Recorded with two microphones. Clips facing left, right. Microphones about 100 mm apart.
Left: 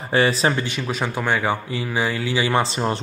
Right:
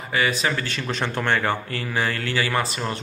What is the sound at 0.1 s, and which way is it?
Speech, 30° left (ahead or behind).